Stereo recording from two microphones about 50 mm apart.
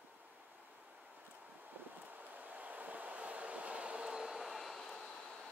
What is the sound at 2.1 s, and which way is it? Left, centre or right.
Train, right.